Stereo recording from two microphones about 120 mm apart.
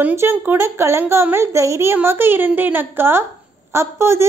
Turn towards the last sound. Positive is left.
turn(degrees=-20)  # may be behind; listen again after turning